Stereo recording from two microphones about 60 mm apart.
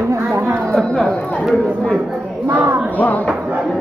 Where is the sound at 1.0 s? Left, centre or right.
Left.